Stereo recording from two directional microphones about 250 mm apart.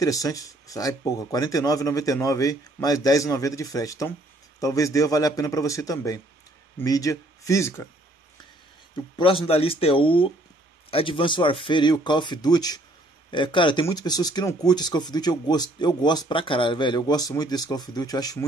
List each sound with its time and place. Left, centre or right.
0.0 s speech: centre
8.9 s speech: centre